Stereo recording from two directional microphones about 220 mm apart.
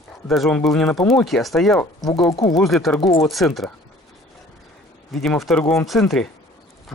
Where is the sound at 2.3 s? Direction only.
15° left (ahead or behind).